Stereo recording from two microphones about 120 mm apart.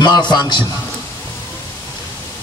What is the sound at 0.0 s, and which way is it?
Speech, 40° left (ahead or behind).